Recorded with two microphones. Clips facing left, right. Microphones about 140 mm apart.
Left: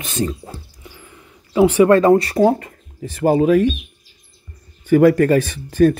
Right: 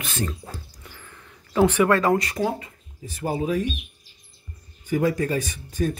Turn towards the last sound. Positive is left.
turn(degrees=65)  # may be behind; listen again after turning